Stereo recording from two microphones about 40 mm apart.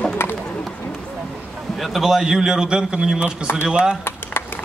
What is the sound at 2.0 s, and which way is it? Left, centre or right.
A man's voice, centre.